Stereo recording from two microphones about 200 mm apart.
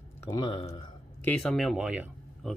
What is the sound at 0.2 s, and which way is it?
Speech, 20° left (ahead or behind).